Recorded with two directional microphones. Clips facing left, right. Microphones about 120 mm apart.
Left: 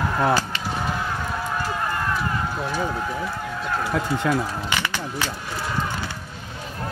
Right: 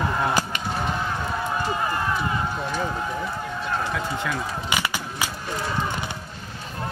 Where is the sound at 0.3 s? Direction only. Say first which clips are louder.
Left 3 dB; 15° right (ahead or behind).